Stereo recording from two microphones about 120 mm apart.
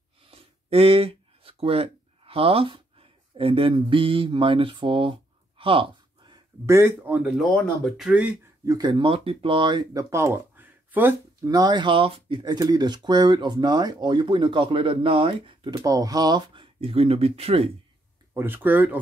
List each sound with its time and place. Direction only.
0.3 s speech: 50° right (ahead or behind)
5.6 s a sound: 45° right (ahead or behind)
6.6 s speech: 20° right (ahead or behind)
7.2 s speech: centre (ahead or behind)
8.1 s speech: 15° right (ahead or behind)
8.6 s speech: 35° right (ahead or behind); by 11.1 s 15° right (ahead or behind)
11.4 s speech: 35° right (ahead or behind); by 17.6 s 55° right (ahead or behind)
18.3 s speech: 20° right (ahead or behind)